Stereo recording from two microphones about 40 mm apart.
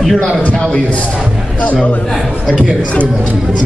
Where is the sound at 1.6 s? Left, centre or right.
Left.